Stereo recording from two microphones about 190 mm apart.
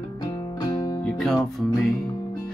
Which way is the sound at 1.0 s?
Centre (ahead or behind).